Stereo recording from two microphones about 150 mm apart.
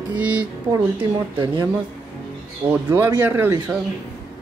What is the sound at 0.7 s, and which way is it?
Speech, 30° right (ahead or behind).